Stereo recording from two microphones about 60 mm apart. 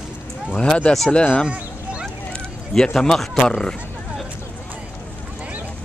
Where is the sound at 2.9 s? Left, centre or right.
Centre.